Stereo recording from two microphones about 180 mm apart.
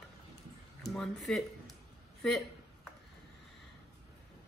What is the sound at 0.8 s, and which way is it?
Speech, centre (ahead or behind).